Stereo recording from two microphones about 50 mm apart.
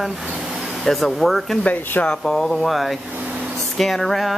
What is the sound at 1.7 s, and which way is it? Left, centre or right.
Speech, left.